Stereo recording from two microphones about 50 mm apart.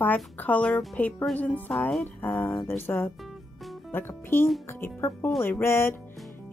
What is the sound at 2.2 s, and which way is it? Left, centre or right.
Speech, left.